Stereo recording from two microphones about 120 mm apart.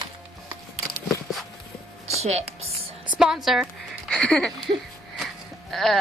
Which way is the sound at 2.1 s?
65° right (ahead or behind).